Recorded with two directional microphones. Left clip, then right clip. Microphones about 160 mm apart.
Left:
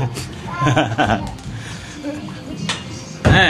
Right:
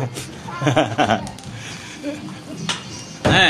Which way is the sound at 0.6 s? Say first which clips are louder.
Even; 15° right (ahead or behind).